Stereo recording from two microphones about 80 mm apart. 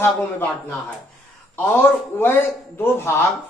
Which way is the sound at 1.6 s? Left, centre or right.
Left.